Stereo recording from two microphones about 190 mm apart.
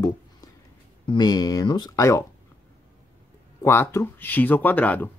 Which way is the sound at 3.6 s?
15° left (ahead or behind).